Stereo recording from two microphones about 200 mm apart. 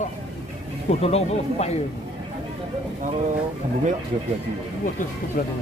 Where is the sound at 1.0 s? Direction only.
30° left (ahead or behind).